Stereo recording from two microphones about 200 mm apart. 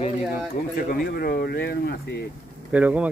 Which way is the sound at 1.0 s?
50° left (ahead or behind).